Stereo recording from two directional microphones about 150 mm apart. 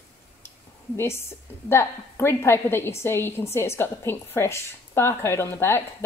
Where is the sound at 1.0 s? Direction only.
15° left (ahead or behind).